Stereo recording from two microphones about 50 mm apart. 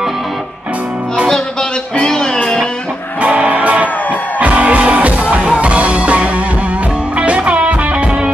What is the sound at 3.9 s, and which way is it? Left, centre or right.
Music, left.